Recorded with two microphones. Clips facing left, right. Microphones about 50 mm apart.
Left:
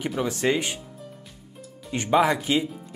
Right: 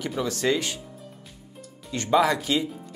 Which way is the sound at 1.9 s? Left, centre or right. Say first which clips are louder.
Left 1 dB; left.